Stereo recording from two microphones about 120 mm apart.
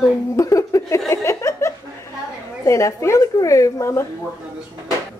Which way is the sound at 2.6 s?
25° left (ahead or behind).